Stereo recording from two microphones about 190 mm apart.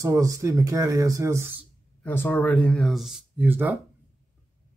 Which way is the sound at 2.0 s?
10° left (ahead or behind).